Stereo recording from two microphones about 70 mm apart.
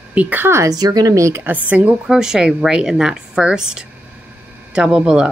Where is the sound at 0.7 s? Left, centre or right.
Right.